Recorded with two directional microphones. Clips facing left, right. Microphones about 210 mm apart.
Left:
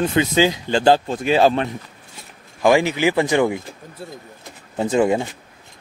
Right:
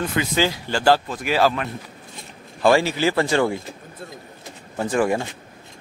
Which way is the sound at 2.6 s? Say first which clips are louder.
Left 2 dB; 15° left (ahead or behind).